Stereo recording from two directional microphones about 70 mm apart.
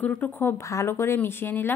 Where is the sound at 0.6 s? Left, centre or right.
Left.